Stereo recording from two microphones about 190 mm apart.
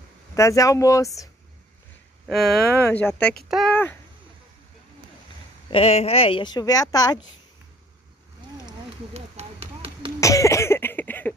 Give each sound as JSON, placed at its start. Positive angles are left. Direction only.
{"t": 0.3, "sound": "speech", "side_deg": 15}
{"t": 2.2, "sound": "speech", "side_deg": 0}
{"t": 5.7, "sound": "a woman's voice", "side_deg": 30}
{"t": 9.1, "sound": "a sound", "side_deg": -35}
{"t": 10.2, "sound": "cough", "side_deg": 15}